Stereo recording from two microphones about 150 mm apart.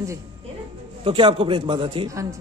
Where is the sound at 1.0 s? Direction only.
35° right (ahead or behind).